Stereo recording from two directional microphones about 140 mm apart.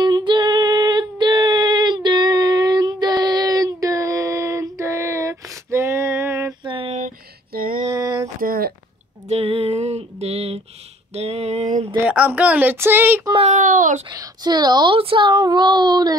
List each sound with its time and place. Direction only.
0.0 s female singing: 35° right (ahead or behind); by 6.5 s 20° right (ahead or behind)
6.6 s a sound: 40° right (ahead or behind)
7.5 s a sound: 90° right
7.9 s a sound: 25° right (ahead or behind)
8.4 s speech: 90° right
9.3 s female singing: 40° right (ahead or behind)
12.1 s speech: 10° right (ahead or behind)
13.4 s a child's voice: 60° right (ahead or behind)
14.0 s speech: 30° right (ahead or behind)